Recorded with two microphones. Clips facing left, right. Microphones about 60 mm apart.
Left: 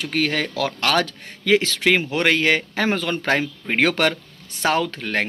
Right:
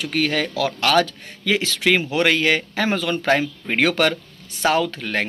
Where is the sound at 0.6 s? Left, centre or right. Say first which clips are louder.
Right 3 dB; left.